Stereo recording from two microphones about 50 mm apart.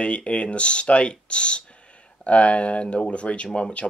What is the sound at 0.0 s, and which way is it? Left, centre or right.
Speech, left.